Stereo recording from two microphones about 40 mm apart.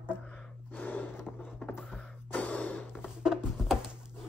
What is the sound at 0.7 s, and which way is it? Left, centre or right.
Gasp, left.